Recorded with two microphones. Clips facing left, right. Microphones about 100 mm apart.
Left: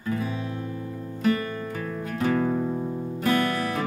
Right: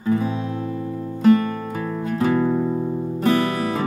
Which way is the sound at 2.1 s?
30° right (ahead or behind).